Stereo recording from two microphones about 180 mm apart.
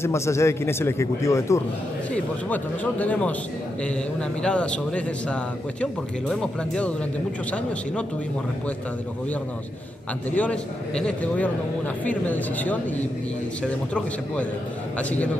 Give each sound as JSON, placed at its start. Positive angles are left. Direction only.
{"t": 0.0, "sound": "a man's voice", "side_deg": 15}
{"t": 10.3, "sound": "a man's voice", "side_deg": 5}